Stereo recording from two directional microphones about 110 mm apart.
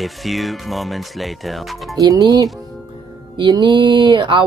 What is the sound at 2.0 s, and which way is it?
Speech, 35° right (ahead or behind).